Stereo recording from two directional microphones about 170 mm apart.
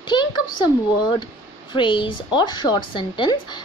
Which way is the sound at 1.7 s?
30° left (ahead or behind).